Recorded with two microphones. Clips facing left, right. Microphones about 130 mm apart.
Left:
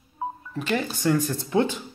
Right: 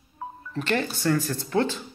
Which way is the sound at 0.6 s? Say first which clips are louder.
Right 1 dB; 10° left (ahead or behind).